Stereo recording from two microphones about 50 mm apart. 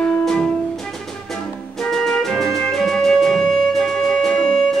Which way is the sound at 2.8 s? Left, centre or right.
Centre.